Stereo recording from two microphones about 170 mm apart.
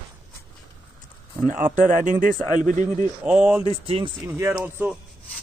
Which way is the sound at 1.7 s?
50° right (ahead or behind).